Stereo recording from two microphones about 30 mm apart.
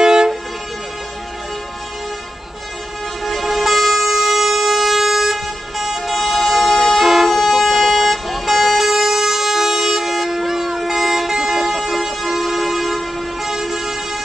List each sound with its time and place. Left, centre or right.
0.0 s vehicle: right
3.3 s vehicle: centre
7.0 s vehicle: centre